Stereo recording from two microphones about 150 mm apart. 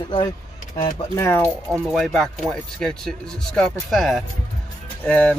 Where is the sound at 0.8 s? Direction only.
20° left (ahead or behind).